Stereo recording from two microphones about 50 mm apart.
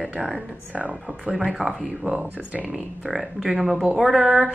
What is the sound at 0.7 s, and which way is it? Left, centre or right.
Speech, right.